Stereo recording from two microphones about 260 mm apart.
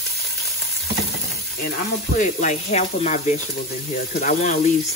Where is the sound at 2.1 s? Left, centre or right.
Left.